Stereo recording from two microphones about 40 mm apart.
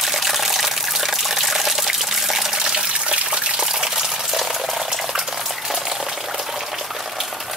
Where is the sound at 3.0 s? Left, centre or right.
Right.